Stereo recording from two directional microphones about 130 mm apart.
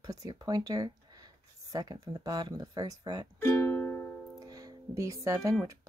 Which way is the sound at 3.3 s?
20° left (ahead or behind).